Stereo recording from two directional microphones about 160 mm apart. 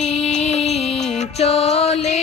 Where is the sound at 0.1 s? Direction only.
45° left (ahead or behind).